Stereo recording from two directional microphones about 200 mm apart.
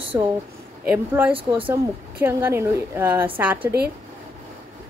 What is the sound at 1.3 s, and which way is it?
Speech, 25° right (ahead or behind).